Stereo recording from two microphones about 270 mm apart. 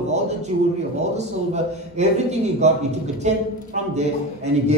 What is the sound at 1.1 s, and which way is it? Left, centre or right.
A man's voice, right.